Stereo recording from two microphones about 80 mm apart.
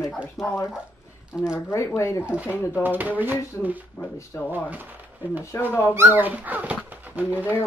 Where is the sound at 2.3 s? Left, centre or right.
Centre.